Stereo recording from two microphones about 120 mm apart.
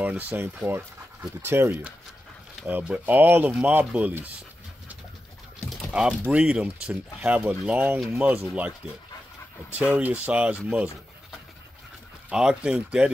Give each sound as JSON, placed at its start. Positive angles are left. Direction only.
{"t": 0.0, "sound": "speech", "side_deg": -15}
{"t": 5.7, "sound": "a sound", "side_deg": -5}
{"t": 6.2, "sound": "speech", "side_deg": -10}
{"t": 9.9, "sound": "speech", "side_deg": -10}
{"t": 12.3, "sound": "speech", "side_deg": -5}